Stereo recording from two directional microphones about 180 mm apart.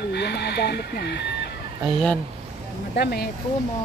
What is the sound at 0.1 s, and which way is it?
Chicken, 65° left (ahead or behind).